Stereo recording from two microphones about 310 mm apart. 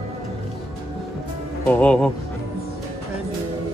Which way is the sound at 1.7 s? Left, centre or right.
Centre.